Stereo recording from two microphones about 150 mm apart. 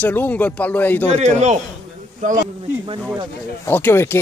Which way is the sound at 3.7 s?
15° left (ahead or behind).